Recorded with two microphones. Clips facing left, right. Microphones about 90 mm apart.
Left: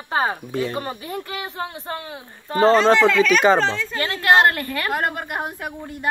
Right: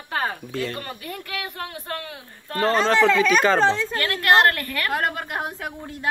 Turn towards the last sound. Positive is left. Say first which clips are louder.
# left 2 dB
turn(degrees=5)  # may be behind; listen again after turning